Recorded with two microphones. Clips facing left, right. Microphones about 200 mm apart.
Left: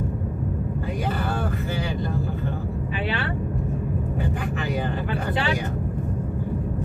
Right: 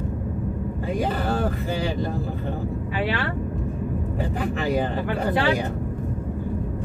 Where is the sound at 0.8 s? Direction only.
35° right (ahead or behind).